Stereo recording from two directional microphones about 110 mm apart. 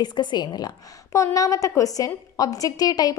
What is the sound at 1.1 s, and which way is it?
A woman's voice, 30° left (ahead or behind).